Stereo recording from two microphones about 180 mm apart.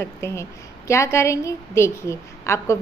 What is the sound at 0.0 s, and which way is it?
A woman's voice, 15° left (ahead or behind).